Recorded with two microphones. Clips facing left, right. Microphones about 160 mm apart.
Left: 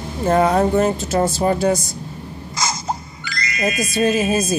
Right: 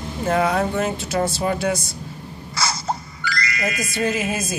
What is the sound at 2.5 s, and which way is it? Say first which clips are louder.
Music: left 1 dB; 20° left (ahead or behind).